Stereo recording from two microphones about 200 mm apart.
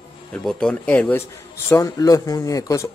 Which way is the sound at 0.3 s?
5° left (ahead or behind).